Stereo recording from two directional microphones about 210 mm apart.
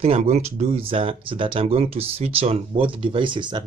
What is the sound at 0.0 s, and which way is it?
Speech, 30° right (ahead or behind).